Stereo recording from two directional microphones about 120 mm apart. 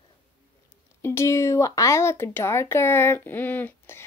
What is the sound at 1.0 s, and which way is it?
Speech, 25° left (ahead or behind).